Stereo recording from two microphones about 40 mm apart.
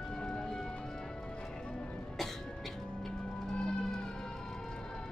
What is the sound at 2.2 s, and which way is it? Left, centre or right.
Music, centre.